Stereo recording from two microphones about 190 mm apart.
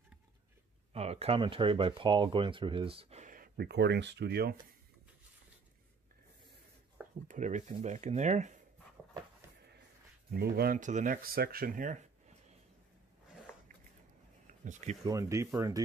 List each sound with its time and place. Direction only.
0.9 s speech: 35° right (ahead or behind); by 4.6 s 55° right (ahead or behind)
7.2 s speech: 40° right (ahead or behind)
10.3 s speech: 55° right (ahead or behind); by 12.5 s 40° right (ahead or behind)
14.6 s speech: 40° right (ahead or behind)
15.0 s speech: 15° right (ahead or behind)